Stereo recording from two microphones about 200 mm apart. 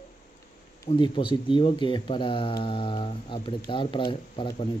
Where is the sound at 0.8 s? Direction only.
25° left (ahead or behind).